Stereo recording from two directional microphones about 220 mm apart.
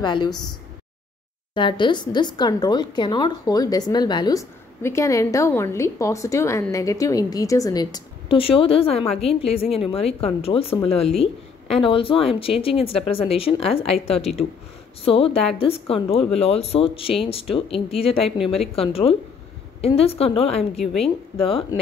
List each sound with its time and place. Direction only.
0.0 s speech: 20° left (ahead or behind)
1.5 s speech: 20° left (ahead or behind)
20.7 s a woman's voice: centre (ahead or behind)
21.4 s speech: 25° left (ahead or behind)